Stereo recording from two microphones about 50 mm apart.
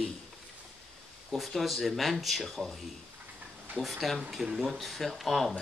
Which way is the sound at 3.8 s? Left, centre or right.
Centre.